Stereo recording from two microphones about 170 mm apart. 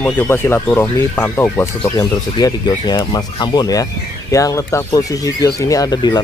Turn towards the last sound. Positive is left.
turn(degrees=25)  # may be behind; listen again after turning